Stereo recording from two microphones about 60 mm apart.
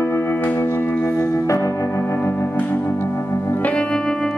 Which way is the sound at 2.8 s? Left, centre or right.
Left.